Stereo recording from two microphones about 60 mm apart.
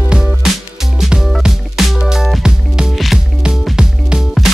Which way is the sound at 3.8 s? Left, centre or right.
Centre.